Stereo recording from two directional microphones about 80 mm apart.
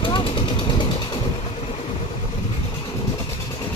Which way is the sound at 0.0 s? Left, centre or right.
Left.